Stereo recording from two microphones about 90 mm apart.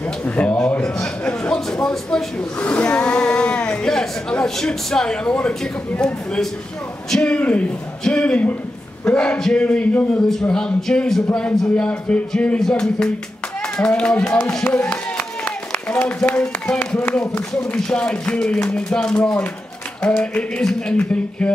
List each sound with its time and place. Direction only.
0.0 s a man's voice: 15° left (ahead or behind)
14.5 s a sound: 10° left (ahead or behind)
16.3 s speech: 10° left (ahead or behind)